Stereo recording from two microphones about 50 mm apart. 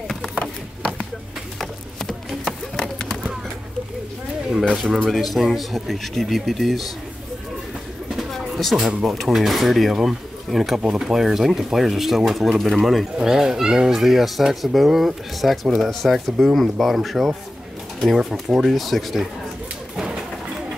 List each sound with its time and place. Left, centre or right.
0.1 s chop: centre
1.6 s horse: centre
4.8 s speech: centre
8.3 s a sound: centre
8.7 s speech: centre
10.8 s speech: centre
11.1 s speech: centre